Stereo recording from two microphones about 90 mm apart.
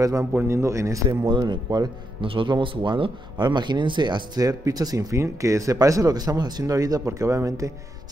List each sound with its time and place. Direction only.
0.0 s speech: 40° right (ahead or behind)
0.3 s speech: 30° right (ahead or behind)
1.3 s speech: 55° right (ahead or behind)
2.2 s speech: 70° right (ahead or behind); by 7.7 s 35° right (ahead or behind)